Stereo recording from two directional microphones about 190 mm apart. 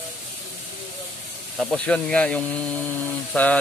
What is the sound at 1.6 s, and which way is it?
Speech, 5° left (ahead or behind).